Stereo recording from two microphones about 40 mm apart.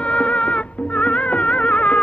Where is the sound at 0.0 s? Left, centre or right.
Left.